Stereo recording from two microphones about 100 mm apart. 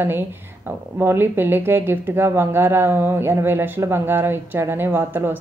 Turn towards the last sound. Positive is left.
turn(degrees=-20)  # may be behind; listen again after turning